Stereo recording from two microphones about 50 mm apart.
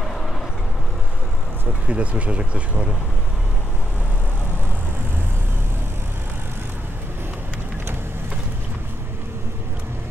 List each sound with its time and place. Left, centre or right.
1.9 s speech: right